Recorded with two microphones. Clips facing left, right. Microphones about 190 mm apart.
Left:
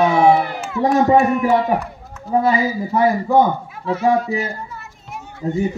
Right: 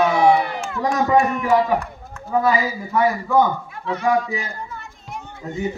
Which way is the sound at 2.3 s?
30° left (ahead or behind).